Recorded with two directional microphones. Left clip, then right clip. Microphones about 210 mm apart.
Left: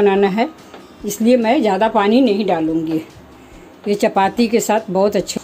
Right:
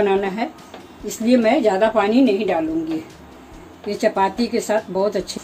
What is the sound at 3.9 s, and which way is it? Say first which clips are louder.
Speech: left 3 dB; 45° left (ahead or behind).